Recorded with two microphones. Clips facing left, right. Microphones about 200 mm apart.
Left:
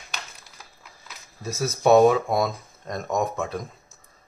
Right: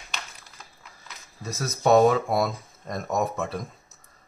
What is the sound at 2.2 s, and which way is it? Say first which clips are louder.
Speech: left 1 dB; 5° right (ahead or behind).